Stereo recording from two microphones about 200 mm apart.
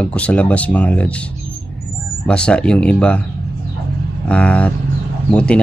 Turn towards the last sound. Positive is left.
turn(degrees=5)  # may be behind; listen again after turning